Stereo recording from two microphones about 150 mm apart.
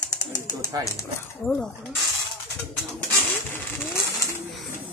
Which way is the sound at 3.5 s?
20° left (ahead or behind).